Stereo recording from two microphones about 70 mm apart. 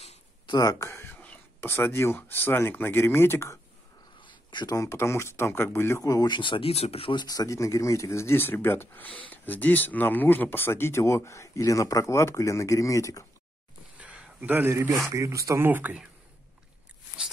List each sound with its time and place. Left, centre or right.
0.5 s speech: left
1.6 s speech: left
4.5 s speech: left
4.7 s speech: left
7.2 s speech: left
7.5 s speech: left
13.9 s a sound: centre
14.5 s speech: right
15.1 s speech: right
15.6 s speech: right